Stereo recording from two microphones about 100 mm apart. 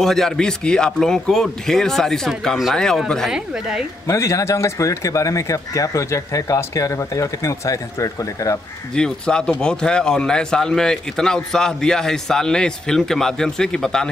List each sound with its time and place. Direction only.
0.0 s speech: 5° left (ahead or behind)
3.3 s speech: 5° right (ahead or behind)
4.1 s speech: 30° left (ahead or behind)
8.9 s a man's voice: 10° left (ahead or behind)